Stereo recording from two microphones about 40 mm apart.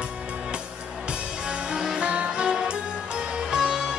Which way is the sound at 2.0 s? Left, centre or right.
Right.